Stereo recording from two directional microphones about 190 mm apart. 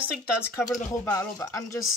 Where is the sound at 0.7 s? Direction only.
5° left (ahead or behind).